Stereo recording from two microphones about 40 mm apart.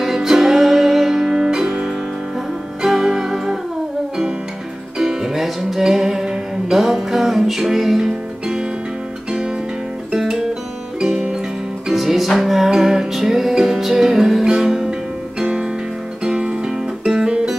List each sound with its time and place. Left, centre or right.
0.0 s music: centre
4.9 s music: centre
10.1 s music: centre
11.9 s music: centre; by 17.1 s right